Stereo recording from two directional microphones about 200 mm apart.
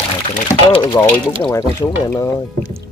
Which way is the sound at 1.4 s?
15° left (ahead or behind).